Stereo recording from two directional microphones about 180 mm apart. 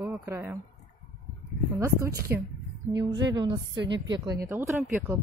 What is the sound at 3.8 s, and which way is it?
Speech, 80° right.